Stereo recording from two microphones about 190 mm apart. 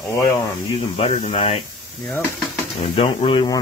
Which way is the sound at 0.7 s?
35° left (ahead or behind).